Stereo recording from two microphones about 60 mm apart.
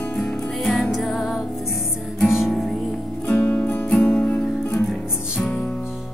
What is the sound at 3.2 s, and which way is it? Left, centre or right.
Music, left.